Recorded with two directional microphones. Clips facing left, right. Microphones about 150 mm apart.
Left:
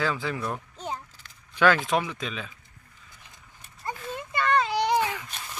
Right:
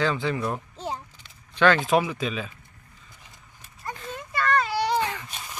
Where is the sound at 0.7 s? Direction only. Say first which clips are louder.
Right 2 dB; 30° right (ahead or behind).